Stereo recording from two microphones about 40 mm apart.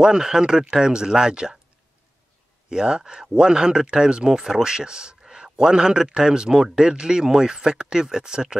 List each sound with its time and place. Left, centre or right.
0.0 s speech: centre
2.7 s speech: centre